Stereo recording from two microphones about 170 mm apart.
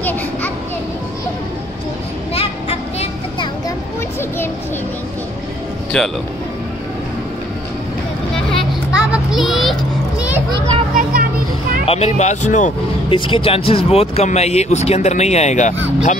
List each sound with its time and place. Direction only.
2.3 s a sound: 35° left (ahead or behind)
5.9 s speech: 5° left (ahead or behind)
8.5 s children playing: centre (ahead or behind)
11.8 s speech: 35° left (ahead or behind)
13.1 s speech: 30° left (ahead or behind)